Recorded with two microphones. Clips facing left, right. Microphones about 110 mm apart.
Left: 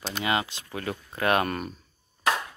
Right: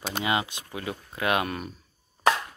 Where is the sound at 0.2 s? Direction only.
20° right (ahead or behind); by 1.7 s 5° right (ahead or behind).